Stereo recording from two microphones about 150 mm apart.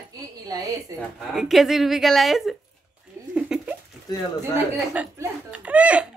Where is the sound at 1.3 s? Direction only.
Centre (ahead or behind).